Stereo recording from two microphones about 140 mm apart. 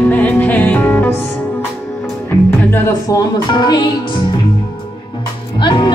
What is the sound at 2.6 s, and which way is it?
Music, 15° left (ahead or behind).